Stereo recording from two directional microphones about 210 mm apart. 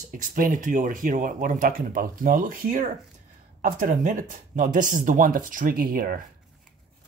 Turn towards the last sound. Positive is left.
turn(degrees=-40)  # may be behind; listen again after turning